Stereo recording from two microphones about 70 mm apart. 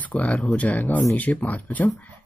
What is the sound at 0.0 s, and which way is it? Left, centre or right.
Speech, left.